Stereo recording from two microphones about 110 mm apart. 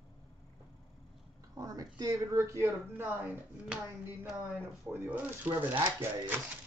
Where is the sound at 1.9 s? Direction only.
30° right (ahead or behind).